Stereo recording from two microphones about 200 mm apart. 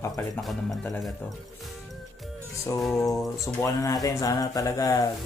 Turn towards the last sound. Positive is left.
turn(degrees=15)  # may be behind; listen again after turning